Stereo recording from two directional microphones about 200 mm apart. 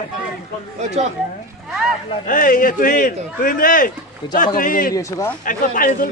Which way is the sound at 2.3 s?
45° left (ahead or behind).